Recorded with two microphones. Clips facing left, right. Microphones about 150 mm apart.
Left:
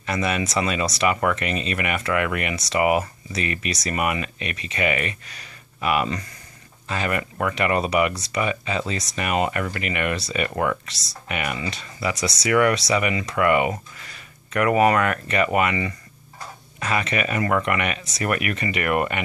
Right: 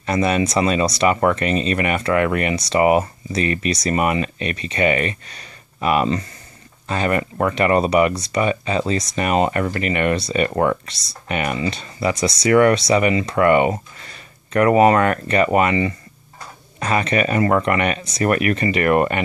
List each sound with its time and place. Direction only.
0.0 s speech: 35° right (ahead or behind)